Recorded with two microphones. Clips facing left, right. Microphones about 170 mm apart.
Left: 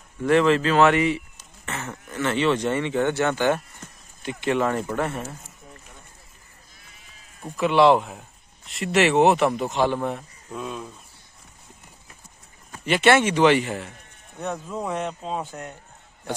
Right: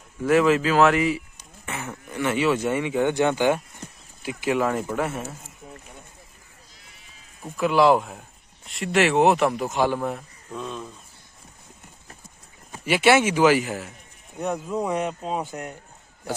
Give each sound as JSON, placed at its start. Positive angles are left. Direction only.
{"t": 0.2, "sound": "speech", "side_deg": -5}
{"t": 7.4, "sound": "speech", "side_deg": 0}
{"t": 12.8, "sound": "speech", "side_deg": -10}